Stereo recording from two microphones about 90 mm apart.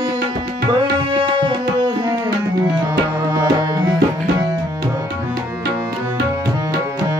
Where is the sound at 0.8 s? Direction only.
70° right (ahead or behind); by 3.9 s 45° right (ahead or behind).